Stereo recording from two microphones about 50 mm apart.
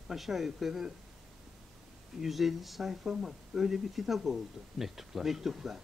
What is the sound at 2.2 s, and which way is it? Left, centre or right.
Speech, centre.